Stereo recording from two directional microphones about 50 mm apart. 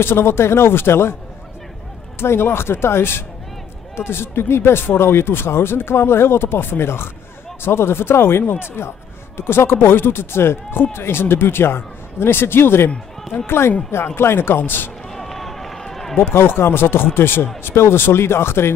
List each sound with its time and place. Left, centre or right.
0.0 s speech: left
2.1 s speech: left
14.6 s speech: left
15.0 s run: centre
16.2 s speech: left